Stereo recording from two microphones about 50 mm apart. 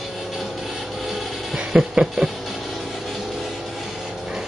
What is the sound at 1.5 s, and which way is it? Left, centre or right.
Music, centre.